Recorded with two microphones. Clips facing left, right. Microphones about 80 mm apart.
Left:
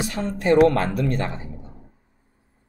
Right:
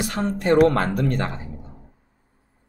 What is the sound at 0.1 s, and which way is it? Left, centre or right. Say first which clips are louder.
Speech: even; right.